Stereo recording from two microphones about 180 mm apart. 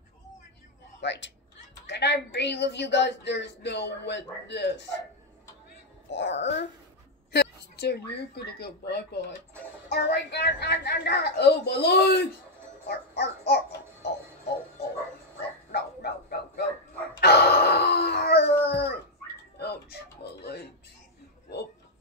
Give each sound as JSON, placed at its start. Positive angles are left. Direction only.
{"t": 1.0, "sound": "a woman's voice", "side_deg": 75}
{"t": 6.0, "sound": "a woman's voice", "side_deg": 80}
{"t": 7.3, "sound": "a woman's voice", "side_deg": 65}
{"t": 12.8, "sound": "music", "side_deg": 65}
{"t": 15.7, "sound": "bow-wow", "side_deg": 60}
{"t": 17.2, "sound": "howl", "side_deg": 65}
{"t": 19.6, "sound": "music", "side_deg": 65}